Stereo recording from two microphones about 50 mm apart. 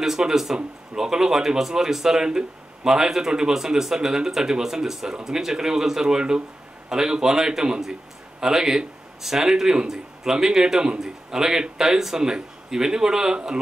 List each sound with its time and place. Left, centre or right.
0.0 s speech: centre